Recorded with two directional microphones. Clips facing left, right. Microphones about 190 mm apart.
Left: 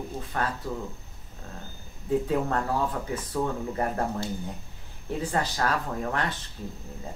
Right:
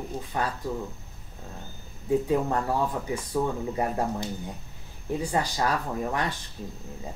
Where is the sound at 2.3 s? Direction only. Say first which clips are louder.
Right 1 dB; 15° right (ahead or behind).